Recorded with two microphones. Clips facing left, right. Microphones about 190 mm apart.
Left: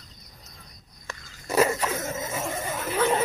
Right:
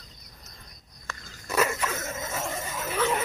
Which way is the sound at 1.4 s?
35° left (ahead or behind).